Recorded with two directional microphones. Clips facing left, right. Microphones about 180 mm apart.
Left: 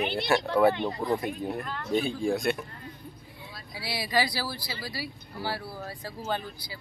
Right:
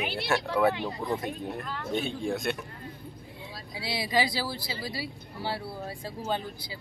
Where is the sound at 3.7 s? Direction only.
20° right (ahead or behind).